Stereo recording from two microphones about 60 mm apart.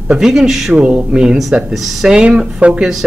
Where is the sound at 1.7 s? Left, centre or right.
Centre.